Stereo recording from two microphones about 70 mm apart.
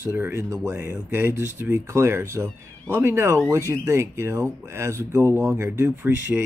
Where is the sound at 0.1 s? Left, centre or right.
Right.